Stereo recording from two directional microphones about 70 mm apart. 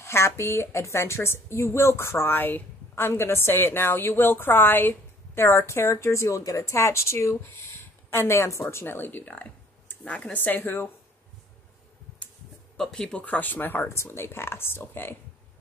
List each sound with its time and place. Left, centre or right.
0.0 s a woman's voice: left
12.7 s speech: centre
13.2 s a woman's voice: left